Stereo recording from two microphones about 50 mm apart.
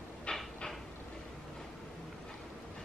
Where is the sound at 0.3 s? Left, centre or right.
Left.